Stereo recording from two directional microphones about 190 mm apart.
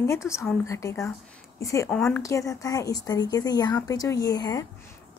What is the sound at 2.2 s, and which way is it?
Speech, 15° left (ahead or behind).